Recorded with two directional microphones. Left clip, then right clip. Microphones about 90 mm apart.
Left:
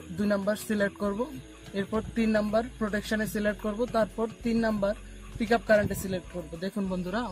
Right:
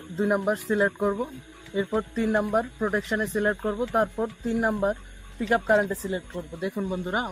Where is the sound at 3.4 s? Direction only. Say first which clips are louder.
Right 3 dB; centre (ahead or behind).